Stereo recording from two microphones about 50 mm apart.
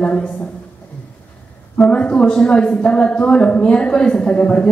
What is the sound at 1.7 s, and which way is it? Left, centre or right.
A woman's voice, centre.